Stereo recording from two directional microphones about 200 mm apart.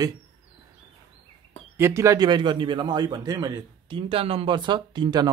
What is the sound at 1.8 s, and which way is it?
A man's voice, 15° right (ahead or behind).